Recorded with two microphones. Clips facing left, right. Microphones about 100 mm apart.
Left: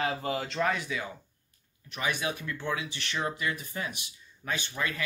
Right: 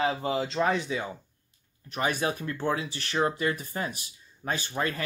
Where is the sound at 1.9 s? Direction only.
40° right (ahead or behind).